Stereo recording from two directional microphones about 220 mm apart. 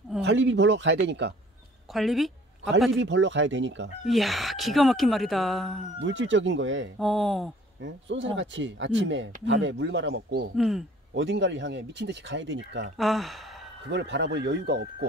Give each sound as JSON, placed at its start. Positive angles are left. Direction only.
{"t": 0.2, "sound": "speech", "side_deg": -55}
{"t": 1.9, "sound": "a woman's voice", "side_deg": 0}
{"t": 3.0, "sound": "speech", "side_deg": -55}
{"t": 4.1, "sound": "speech", "side_deg": 0}
{"t": 5.9, "sound": "speech", "side_deg": -60}
{"t": 7.0, "sound": "speech", "side_deg": 0}
{"t": 7.8, "sound": "speech", "side_deg": -55}
{"t": 10.5, "sound": "speech", "side_deg": 0}
{"t": 11.1, "sound": "speech", "side_deg": -55}
{"t": 12.9, "sound": "speech", "side_deg": 0}
{"t": 13.8, "sound": "speech", "side_deg": -50}